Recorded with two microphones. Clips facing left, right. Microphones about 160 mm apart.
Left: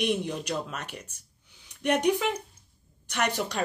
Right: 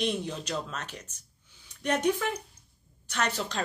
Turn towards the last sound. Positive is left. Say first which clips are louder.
# left 2 dB
turn(degrees=15)  # may be behind; listen again after turning